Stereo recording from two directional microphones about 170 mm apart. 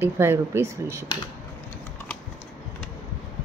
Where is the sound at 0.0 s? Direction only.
15° right (ahead or behind).